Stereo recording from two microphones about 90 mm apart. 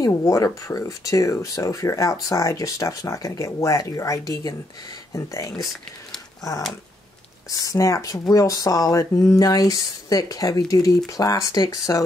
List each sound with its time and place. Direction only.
0.0 s speech: 40° left (ahead or behind)
7.4 s speech: 40° left (ahead or behind)